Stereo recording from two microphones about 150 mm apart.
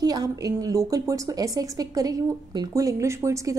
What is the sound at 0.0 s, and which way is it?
A woman's voice, 25° right (ahead or behind).